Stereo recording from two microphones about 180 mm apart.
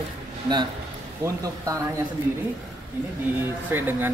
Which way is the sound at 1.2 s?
20° right (ahead or behind).